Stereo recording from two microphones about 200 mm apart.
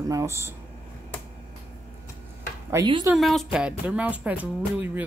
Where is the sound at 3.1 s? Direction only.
Centre (ahead or behind).